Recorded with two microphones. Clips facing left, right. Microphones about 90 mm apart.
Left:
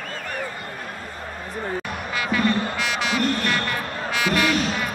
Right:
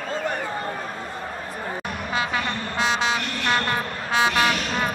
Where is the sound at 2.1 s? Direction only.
25° right (ahead or behind).